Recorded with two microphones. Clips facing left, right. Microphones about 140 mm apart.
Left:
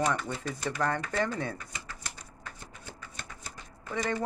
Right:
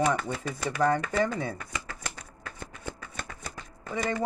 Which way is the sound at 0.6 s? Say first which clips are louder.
Right 5 dB; 10° right (ahead or behind).